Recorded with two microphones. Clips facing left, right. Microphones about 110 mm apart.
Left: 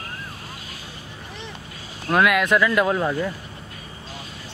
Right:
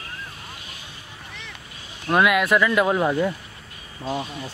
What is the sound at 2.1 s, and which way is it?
Speech, centre (ahead or behind).